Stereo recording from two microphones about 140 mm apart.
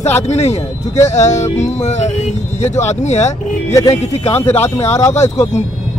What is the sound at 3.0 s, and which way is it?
Speech, 55° left (ahead or behind).